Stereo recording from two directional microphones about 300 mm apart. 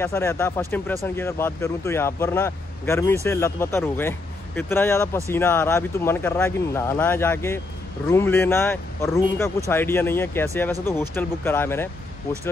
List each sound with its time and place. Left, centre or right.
0.0 s speech: centre